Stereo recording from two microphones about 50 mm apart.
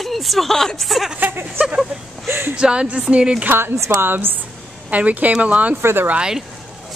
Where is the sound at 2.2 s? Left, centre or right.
Right.